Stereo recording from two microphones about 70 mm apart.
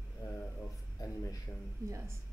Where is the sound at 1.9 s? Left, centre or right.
Right.